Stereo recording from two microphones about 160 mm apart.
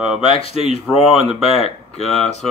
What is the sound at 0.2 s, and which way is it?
Speech, 35° left (ahead or behind).